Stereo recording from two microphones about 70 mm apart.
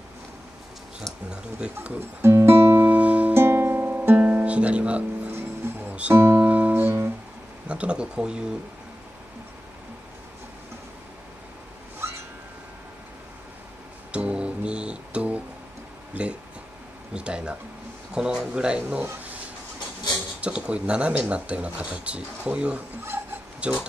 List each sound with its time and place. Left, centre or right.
1.3 s speech: centre
2.2 s music: right
2.8 s music: centre
3.3 s music: right; by 5.3 s centre
5.3 s music: right
6.4 s music: right
7.6 s speech: centre
14.1 s music: centre
17.1 s a sound: centre
20.3 s speech: centre